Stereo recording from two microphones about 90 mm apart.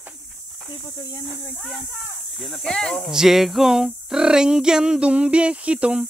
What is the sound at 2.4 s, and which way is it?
Snake, centre (ahead or behind).